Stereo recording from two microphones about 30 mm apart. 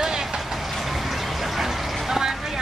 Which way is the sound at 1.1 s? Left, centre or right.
Centre.